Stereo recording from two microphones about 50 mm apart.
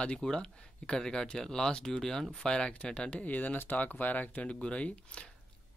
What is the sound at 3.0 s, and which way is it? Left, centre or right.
Speech, left.